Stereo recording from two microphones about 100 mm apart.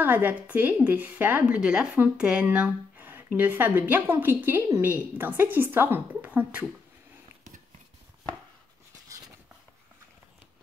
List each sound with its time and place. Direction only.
0.0 s a woman's voice: 15° right (ahead or behind)